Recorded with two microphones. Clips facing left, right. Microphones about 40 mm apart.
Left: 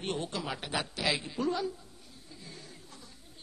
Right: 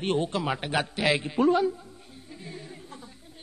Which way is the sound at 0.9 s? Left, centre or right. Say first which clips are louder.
Right 7 dB; right.